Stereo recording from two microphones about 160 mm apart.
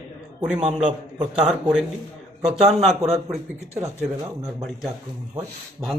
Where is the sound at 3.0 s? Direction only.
40° right (ahead or behind).